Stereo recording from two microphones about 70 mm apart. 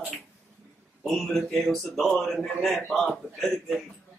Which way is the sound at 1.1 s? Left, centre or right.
Centre.